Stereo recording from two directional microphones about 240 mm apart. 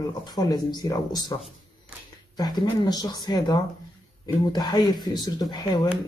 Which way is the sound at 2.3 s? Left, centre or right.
Centre.